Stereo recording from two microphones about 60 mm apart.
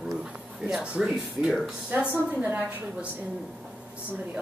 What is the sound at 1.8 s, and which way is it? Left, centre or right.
Speech, right.